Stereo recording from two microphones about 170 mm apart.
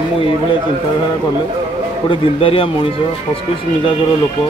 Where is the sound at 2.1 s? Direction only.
30° left (ahead or behind).